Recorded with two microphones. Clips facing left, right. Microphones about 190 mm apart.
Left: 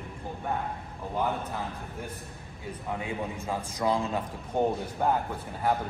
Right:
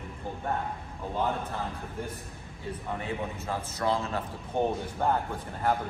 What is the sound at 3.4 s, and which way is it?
A man's voice, 15° left (ahead or behind).